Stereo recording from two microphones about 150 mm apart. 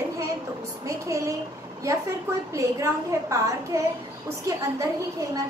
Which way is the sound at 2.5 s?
20° right (ahead or behind).